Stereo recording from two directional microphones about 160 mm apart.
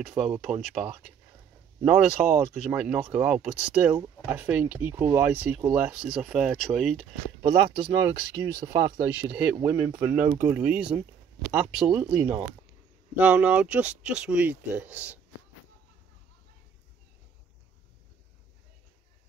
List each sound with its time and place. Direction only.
0.0 s speech: 5° right (ahead or behind)
7.4 s speech: 25° right (ahead or behind)
9.3 s speech: 5° right (ahead or behind)
9.6 s speech: 20° right (ahead or behind)